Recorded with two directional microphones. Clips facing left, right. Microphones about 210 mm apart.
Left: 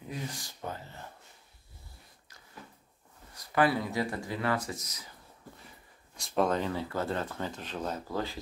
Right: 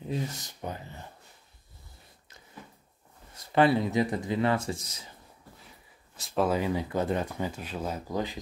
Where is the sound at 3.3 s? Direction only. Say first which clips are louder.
Right 4 dB; 25° right (ahead or behind).